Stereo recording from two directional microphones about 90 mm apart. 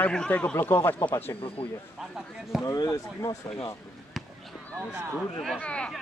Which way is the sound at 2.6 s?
45° left (ahead or behind).